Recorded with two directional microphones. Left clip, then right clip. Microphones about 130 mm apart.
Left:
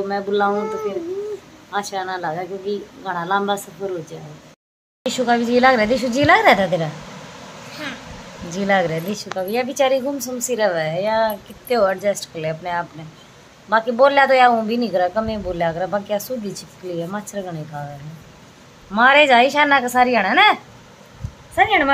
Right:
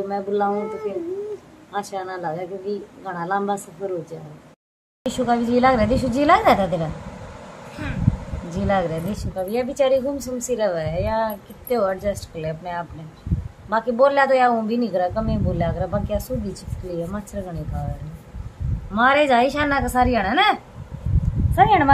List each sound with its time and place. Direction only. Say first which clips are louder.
0.1 s a woman's voice: left 3 dB; 5° left (ahead or behind)
5.0 s a woman's voice: left 3 dB; 15° left (ahead or behind)
8.5 s a woman's voice: left 4 dB; 15° left (ahead or behind)
18.9 s a woman's voice: left 4 dB; 15° left (ahead or behind)
21.5 s a woman's voice: even; 15° left (ahead or behind)